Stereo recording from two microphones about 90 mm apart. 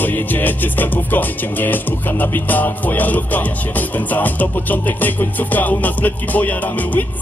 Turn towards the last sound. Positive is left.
turn(degrees=20)  # may be behind; listen again after turning